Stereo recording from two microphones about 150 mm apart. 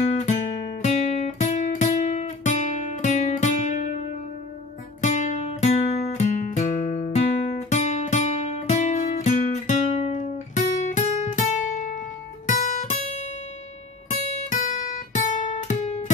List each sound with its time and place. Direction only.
0.0 s music: 50° left (ahead or behind)
0.8 s guitar: 50° left (ahead or behind)
5.0 s music: 50° left (ahead or behind)
12.4 s guitar: 60° left (ahead or behind)